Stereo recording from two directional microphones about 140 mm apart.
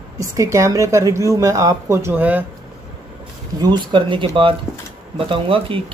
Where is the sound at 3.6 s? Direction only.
35° right (ahead or behind).